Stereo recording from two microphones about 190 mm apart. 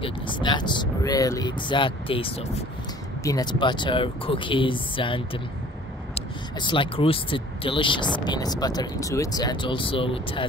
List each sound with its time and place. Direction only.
0.0 s speech: 25° left (ahead or behind)